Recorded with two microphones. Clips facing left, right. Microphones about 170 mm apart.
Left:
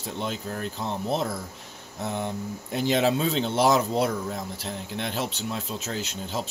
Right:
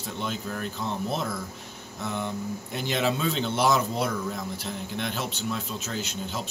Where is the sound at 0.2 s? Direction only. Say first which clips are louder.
Left 1 dB; 30° left (ahead or behind).